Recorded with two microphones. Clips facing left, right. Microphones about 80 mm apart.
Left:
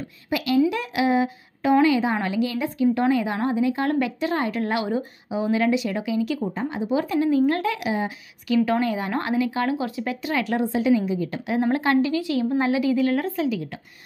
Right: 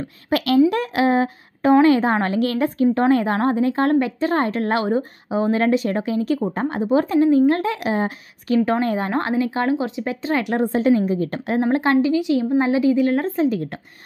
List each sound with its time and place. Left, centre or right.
0.3 s a woman's voice: right
0.7 s a woman's voice: right
6.5 s a woman's voice: right
7.9 s a woman's voice: right
10.6 s a woman's voice: right
11.7 s a woman's voice: right
13.5 s a woman's voice: right